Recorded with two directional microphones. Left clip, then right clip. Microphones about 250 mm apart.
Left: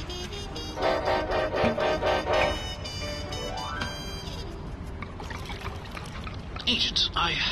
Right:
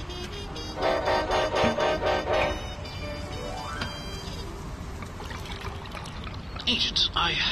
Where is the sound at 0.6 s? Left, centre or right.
Centre.